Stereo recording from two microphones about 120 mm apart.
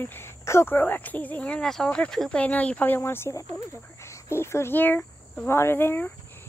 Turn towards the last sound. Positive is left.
turn(degrees=15)  # may be behind; listen again after turning